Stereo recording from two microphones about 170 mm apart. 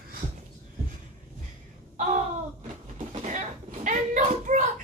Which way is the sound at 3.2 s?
50° right (ahead or behind).